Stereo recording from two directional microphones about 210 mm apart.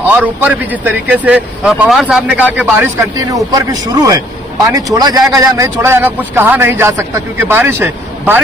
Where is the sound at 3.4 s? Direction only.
15° right (ahead or behind).